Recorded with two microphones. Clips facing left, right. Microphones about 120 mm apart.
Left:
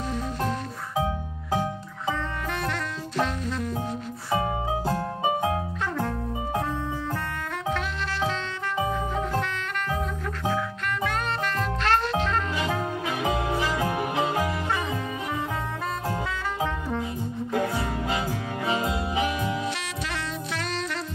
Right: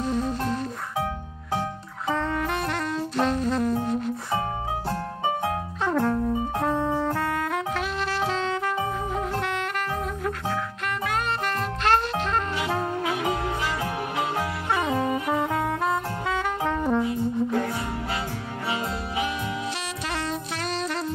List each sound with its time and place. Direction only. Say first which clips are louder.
3.2 s music: right 4 dB; 40° right (ahead or behind)
4.8 s music: left 1 dB; 20° left (ahead or behind)
6.6 s music: right 6 dB; 55° right (ahead or behind)
12.5 s brass instrument: right 1 dB; 15° right (ahead or behind)
13.2 s music: left 1 dB; 15° left (ahead or behind)
15.8 s saxophone: right 3 dB; 20° right (ahead or behind)
16.6 s music: right 6 dB; 60° right (ahead or behind)
17.5 s music: even; 15° left (ahead or behind)
18.7 s saxophone: left 3 dB; 20° left (ahead or behind)